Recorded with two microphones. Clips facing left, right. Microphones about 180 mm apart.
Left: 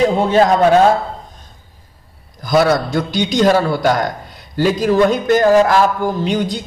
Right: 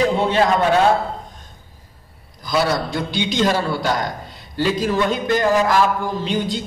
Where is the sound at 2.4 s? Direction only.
50° left (ahead or behind).